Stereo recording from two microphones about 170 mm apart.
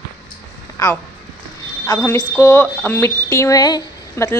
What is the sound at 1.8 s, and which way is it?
A woman's voice, 20° left (ahead or behind).